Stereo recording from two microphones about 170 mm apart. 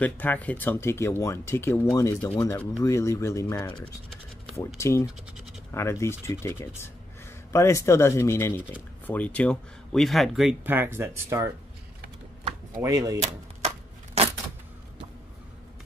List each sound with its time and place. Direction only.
0.0 s speech: 10° left (ahead or behind)
4.7 s speech: 15° left (ahead or behind); by 11.5 s 15° right (ahead or behind)
12.8 s speech: 20° right (ahead or behind)
14.2 s a sound: 40° right (ahead or behind)